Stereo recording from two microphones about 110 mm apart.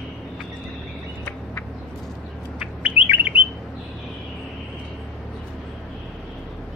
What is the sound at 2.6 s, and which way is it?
Bird, 15° right (ahead or behind).